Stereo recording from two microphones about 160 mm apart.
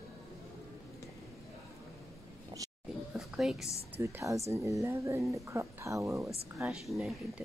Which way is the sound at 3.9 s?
15° right (ahead or behind).